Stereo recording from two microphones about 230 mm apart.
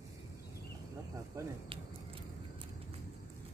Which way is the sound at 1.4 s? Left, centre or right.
Centre.